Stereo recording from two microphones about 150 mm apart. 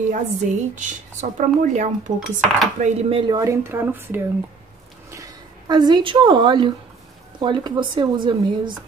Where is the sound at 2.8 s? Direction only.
40° right (ahead or behind).